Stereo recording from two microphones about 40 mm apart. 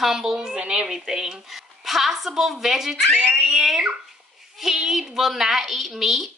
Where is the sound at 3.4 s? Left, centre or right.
Centre.